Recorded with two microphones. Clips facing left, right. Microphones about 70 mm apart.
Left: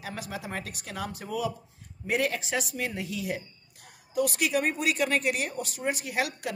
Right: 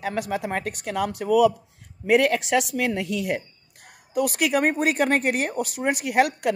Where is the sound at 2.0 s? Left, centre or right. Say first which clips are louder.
Right 9 dB; right.